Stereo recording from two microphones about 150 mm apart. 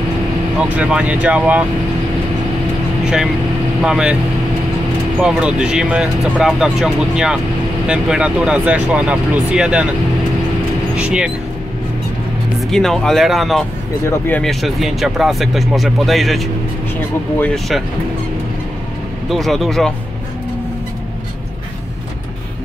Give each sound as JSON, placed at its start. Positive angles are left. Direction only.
{"t": 0.6, "sound": "speech", "side_deg": -5}
{"t": 3.8, "sound": "speech", "side_deg": -5}
{"t": 5.2, "sound": "speech", "side_deg": -5}
{"t": 11.0, "sound": "speech", "side_deg": -5}
{"t": 12.7, "sound": "speech", "side_deg": 5}
{"t": 14.0, "sound": "speech", "side_deg": 15}
{"t": 14.4, "sound": "speech", "side_deg": 0}
{"t": 19.2, "sound": "speech", "side_deg": 0}